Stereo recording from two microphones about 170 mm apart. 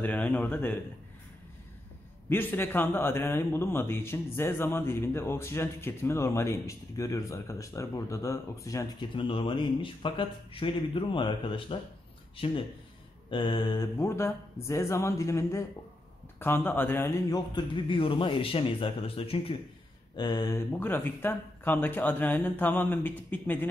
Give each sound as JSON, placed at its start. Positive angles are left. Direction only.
{"t": 0.0, "sound": "a man's voice", "side_deg": 10}
{"t": 2.2, "sound": "a man's voice", "side_deg": 10}
{"t": 9.1, "sound": "speech", "side_deg": 30}
{"t": 13.3, "sound": "a man's voice", "side_deg": 25}
{"t": 17.6, "sound": "a man's voice", "side_deg": 30}